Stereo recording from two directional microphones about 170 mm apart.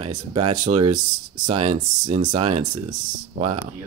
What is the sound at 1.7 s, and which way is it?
Speech, 40° right (ahead or behind).